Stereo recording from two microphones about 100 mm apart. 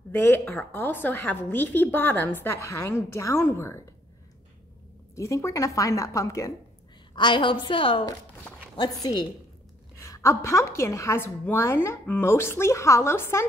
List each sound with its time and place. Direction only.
0.1 s a woman's voice: 20° left (ahead or behind)
5.1 s a woman's voice: 30° left (ahead or behind)
7.2 s a woman's voice: 50° left (ahead or behind)
8.7 s a woman's voice: 45° left (ahead or behind)
9.9 s a woman's voice: 35° left (ahead or behind)